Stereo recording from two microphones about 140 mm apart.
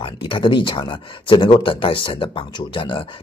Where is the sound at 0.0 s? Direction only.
35° left (ahead or behind).